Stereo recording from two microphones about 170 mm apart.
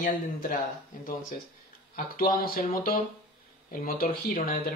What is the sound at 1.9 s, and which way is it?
Speech, 55° left (ahead or behind).